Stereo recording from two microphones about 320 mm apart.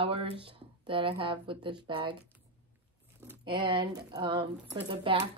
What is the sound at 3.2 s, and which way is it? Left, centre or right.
Speech, centre.